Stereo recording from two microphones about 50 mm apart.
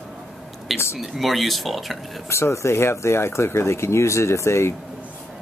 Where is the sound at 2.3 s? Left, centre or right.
Left.